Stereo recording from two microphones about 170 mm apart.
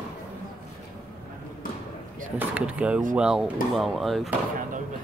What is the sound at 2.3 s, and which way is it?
Speech, 10° right (ahead or behind).